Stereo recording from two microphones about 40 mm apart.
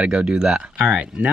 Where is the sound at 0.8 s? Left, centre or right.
Right.